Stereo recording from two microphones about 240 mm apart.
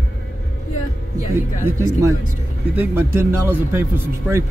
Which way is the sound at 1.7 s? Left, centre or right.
Centre.